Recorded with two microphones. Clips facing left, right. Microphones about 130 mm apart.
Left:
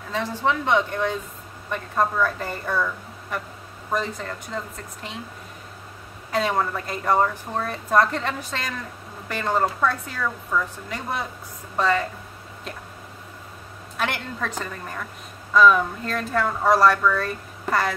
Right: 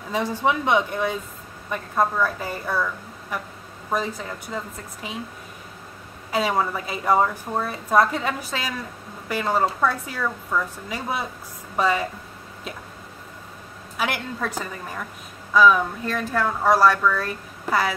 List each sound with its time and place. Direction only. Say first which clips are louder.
0.1 s a woman's voice: right 2 dB; 15° right (ahead or behind)
6.3 s a woman's voice: right 1 dB; 5° right (ahead or behind)
13.9 s a woman's voice: right 1 dB; 5° right (ahead or behind)